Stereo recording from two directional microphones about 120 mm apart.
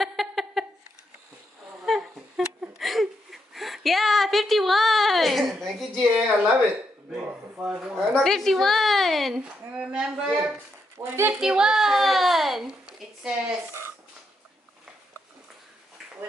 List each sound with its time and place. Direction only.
0.0 s a sound: centre (ahead or behind)
1.9 s whimper: 5° right (ahead or behind)
7.1 s a sound: 10° right (ahead or behind)
8.1 s a woman's voice: 5° left (ahead or behind)
11.0 s speech: 20° right (ahead or behind)
11.3 s a child's voice: 5° right (ahead or behind)